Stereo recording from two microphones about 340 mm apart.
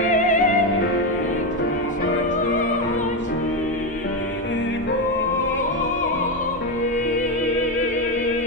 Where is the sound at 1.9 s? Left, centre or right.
Left.